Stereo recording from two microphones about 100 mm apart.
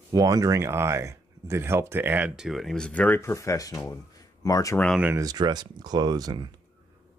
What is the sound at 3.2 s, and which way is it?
Speech, 30° left (ahead or behind).